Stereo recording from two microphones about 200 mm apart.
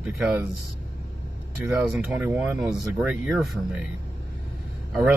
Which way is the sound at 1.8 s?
5° right (ahead or behind).